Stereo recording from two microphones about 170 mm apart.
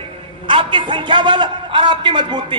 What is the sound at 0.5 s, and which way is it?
A man's voice, 30° right (ahead or behind).